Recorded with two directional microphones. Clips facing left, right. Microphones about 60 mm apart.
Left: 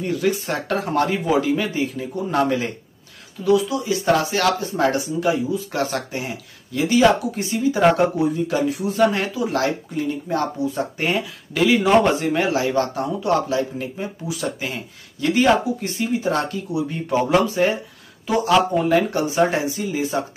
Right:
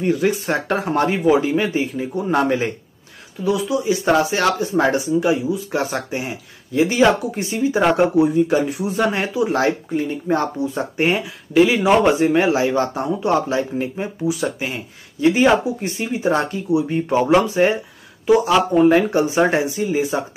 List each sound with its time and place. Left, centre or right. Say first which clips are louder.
0.0 s speech: right 3 dB; right